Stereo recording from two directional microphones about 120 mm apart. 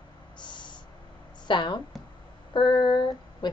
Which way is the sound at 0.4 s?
40° left (ahead or behind).